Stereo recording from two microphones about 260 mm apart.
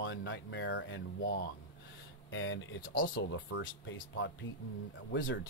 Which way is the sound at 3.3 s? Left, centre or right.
Left.